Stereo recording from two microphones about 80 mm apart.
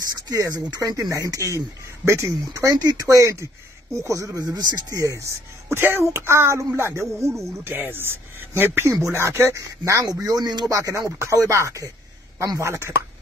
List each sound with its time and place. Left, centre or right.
0.1 s speech: right
4.9 s speech: right
10.2 s speech: right
10.8 s speech: right